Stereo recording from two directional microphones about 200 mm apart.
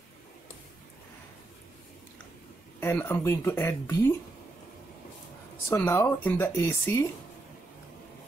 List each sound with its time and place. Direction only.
2.8 s speech: 10° left (ahead or behind)
5.7 s speech: 15° left (ahead or behind)